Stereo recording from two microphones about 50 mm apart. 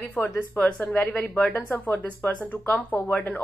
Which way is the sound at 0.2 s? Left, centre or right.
Left.